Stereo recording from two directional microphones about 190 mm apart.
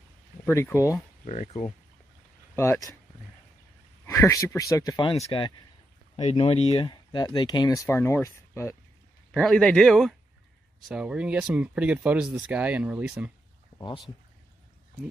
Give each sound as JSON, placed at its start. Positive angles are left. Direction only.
{"t": 0.5, "sound": "speech", "side_deg": 15}
{"t": 1.2, "sound": "speech", "side_deg": 35}
{"t": 2.5, "sound": "speech", "side_deg": 15}
{"t": 4.0, "sound": "speech", "side_deg": 15}
{"t": 9.3, "sound": "speech", "side_deg": 5}
{"t": 13.7, "sound": "speech", "side_deg": 25}